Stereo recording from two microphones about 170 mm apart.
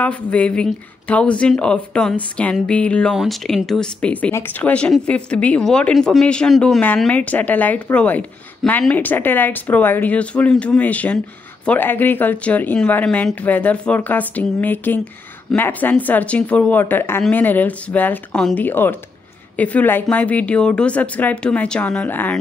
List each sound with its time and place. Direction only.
0.0 s speech: 10° left (ahead or behind)